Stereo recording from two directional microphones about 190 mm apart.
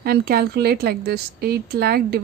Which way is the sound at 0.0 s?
55° right (ahead or behind).